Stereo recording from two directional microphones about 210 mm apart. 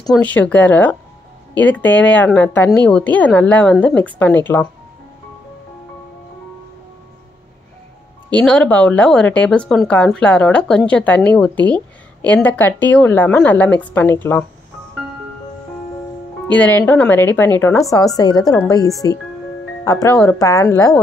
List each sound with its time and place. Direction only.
0.1 s speech: 5° left (ahead or behind)
8.4 s speech: 5° left (ahead or behind)
16.4 s speech: 5° left (ahead or behind)